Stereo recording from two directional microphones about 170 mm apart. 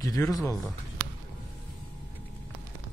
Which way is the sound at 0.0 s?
20° left (ahead or behind).